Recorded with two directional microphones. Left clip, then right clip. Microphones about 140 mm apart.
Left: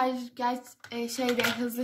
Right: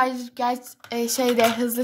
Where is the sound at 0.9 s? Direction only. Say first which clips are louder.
Right 8 dB; 90° right.